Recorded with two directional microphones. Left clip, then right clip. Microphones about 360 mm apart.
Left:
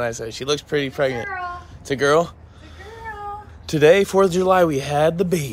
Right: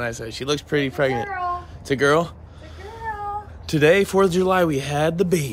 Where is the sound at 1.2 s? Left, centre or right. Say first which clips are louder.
Right 2 dB; right.